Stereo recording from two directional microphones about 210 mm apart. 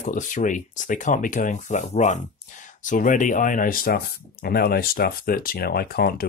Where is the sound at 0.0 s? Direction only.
40° left (ahead or behind).